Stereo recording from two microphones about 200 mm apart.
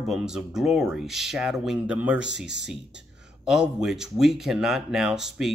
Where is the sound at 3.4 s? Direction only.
5° right (ahead or behind).